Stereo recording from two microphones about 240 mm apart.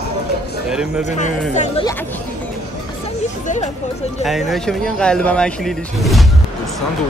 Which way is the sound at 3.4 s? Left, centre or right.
Left.